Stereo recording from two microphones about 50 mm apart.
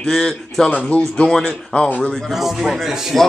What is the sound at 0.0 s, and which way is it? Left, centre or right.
Speech, centre.